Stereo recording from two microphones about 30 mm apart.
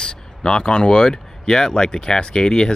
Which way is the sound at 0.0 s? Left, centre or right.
Left.